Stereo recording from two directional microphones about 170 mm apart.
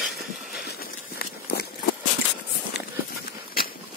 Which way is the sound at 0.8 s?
60° left (ahead or behind).